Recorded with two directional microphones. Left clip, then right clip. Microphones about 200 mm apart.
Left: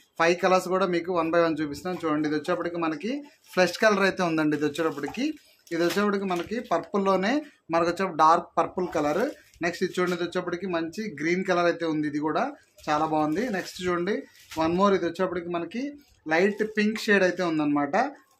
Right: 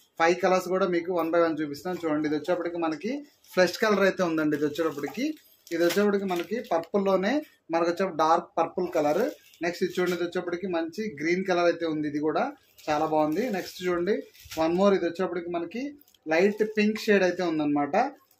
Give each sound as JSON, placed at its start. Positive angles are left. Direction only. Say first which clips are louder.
{"t": 0.2, "sound": "speech", "louder": "left 1 dB", "side_deg": 15}